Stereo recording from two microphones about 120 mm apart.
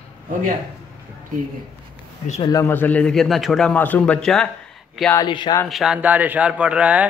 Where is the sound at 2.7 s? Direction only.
15° left (ahead or behind).